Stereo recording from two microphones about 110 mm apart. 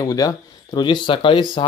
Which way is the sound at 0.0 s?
35° left (ahead or behind).